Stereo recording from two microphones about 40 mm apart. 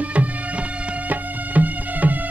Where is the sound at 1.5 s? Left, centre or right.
Right.